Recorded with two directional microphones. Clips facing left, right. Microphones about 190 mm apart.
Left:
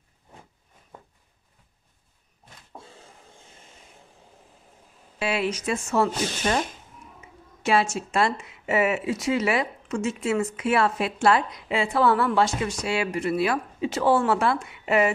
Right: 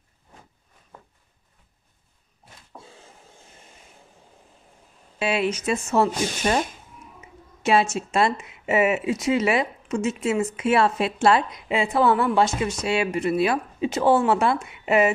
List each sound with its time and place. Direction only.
5.2 s speech: 20° right (ahead or behind)
7.6 s speech: 20° right (ahead or behind)